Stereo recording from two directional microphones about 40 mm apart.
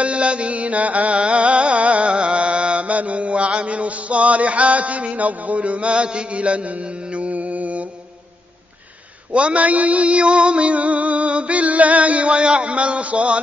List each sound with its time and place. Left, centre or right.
0.0 s music: right
2.1 s chant: right
9.3 s a sound: right